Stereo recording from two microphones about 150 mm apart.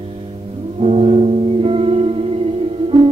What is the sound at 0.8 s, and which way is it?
Music, 40° right (ahead or behind).